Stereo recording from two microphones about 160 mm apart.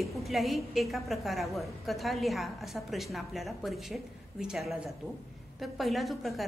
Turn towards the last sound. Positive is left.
turn(degrees=0)  # may be behind; listen again after turning